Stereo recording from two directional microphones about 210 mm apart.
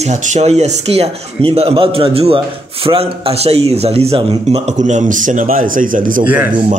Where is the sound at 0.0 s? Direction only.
35° right (ahead or behind).